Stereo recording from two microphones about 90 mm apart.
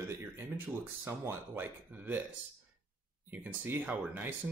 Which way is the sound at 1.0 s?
25° right (ahead or behind).